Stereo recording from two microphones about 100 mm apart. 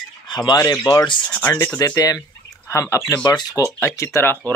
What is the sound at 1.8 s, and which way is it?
Speech, 40° left (ahead or behind).